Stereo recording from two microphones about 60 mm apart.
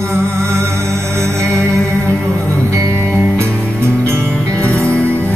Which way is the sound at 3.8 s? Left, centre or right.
Right.